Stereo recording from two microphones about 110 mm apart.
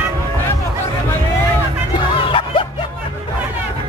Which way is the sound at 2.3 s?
50° left (ahead or behind).